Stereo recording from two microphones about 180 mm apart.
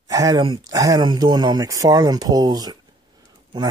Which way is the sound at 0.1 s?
20° right (ahead or behind).